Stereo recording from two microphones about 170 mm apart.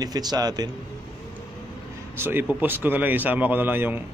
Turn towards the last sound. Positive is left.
turn(degrees=-10)  # may be behind; listen again after turning